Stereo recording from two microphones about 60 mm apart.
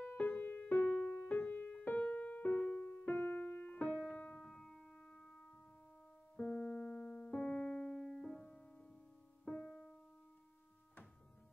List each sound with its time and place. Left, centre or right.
0.1 s music: left; by 9.9 s centre